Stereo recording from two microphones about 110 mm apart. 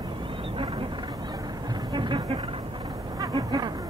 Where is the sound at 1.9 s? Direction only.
45° right (ahead or behind).